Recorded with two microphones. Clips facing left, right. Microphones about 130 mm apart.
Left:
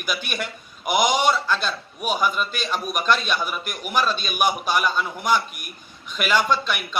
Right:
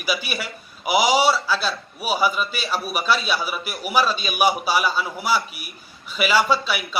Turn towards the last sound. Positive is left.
turn(degrees=-5)  # may be behind; listen again after turning